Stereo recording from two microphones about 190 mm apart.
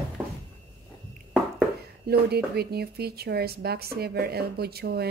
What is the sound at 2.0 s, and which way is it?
Speech, 55° right (ahead or behind).